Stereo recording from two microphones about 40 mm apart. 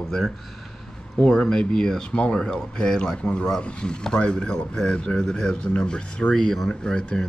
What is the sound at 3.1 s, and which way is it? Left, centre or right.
Speech, left.